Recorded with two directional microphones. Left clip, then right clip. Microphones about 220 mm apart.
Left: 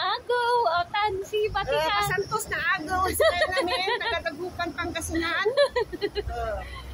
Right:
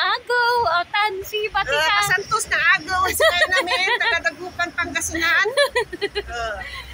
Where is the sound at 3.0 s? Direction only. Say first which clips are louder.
Right 5 dB; 15° right (ahead or behind).